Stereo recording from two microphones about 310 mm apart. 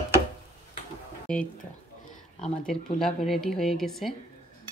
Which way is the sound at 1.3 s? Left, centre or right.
Centre.